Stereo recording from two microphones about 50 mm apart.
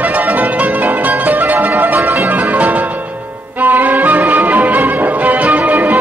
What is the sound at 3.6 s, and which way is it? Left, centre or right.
Music, right.